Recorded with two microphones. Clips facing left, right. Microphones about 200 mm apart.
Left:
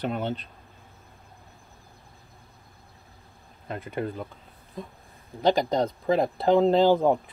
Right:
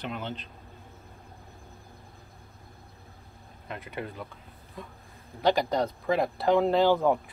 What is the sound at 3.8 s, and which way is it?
Speech, 45° left (ahead or behind).